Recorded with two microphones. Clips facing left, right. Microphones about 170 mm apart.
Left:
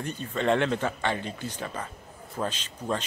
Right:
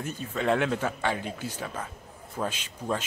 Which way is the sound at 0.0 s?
5° right (ahead or behind).